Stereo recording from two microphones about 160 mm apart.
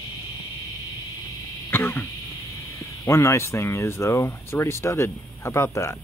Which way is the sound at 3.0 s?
15° left (ahead or behind).